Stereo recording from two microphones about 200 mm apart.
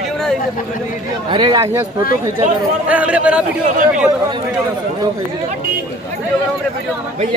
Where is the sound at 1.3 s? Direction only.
25° right (ahead or behind).